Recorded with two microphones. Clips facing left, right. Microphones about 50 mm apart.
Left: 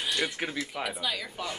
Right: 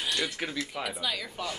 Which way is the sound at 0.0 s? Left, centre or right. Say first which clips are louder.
Left 1 dB; centre.